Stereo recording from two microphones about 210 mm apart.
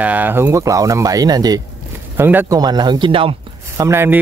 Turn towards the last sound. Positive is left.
turn(degrees=-10)  # may be behind; listen again after turning